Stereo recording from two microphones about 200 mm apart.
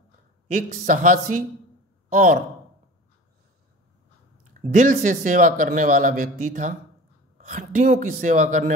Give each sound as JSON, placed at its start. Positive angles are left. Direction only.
{"t": 0.5, "sound": "a man's voice", "side_deg": -45}
{"t": 4.6, "sound": "a man's voice", "side_deg": -40}